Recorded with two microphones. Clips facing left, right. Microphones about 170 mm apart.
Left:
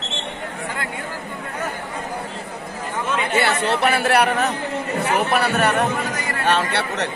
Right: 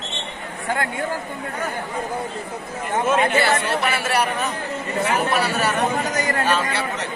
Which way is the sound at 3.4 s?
65° left (ahead or behind).